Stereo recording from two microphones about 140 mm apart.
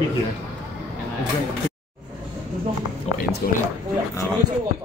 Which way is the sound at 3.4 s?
90° left.